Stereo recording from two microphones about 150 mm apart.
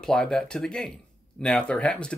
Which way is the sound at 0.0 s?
5° left (ahead or behind).